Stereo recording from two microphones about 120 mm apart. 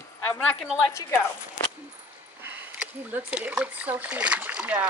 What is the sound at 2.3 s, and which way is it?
Speech, 15° right (ahead or behind).